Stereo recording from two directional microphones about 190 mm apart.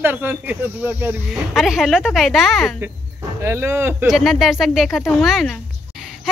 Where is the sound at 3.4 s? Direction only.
15° right (ahead or behind).